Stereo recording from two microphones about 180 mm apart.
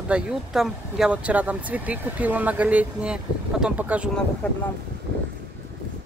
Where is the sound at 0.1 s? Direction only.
5° right (ahead or behind).